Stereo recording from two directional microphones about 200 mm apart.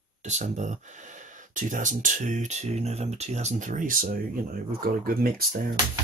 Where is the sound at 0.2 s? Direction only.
35° right (ahead or behind).